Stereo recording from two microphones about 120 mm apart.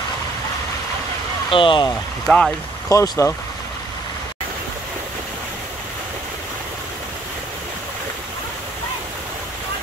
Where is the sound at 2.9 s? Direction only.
25° left (ahead or behind).